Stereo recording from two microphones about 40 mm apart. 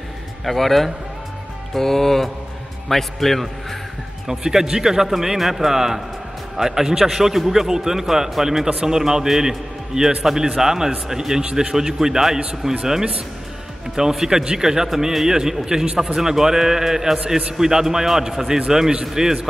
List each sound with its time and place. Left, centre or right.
0.5 s speech: centre
4.3 s a man's voice: centre
13.9 s a man's voice: centre